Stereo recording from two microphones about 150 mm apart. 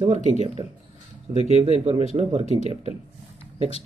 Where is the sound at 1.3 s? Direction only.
40° left (ahead or behind).